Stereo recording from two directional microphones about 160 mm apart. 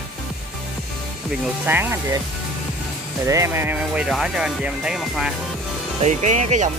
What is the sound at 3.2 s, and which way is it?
Speech, 20° right (ahead or behind).